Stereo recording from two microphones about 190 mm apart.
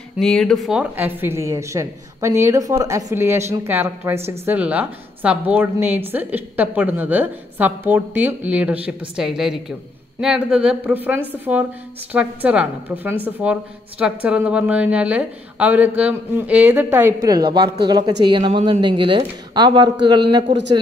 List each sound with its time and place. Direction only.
0.2 s a woman's voice: 5° left (ahead or behind); by 20.4 s 25° right (ahead or behind)